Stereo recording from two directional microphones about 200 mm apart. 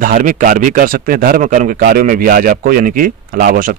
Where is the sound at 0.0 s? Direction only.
45° right (ahead or behind).